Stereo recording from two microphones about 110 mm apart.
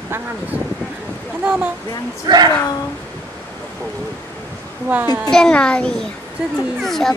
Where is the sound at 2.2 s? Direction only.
40° right (ahead or behind).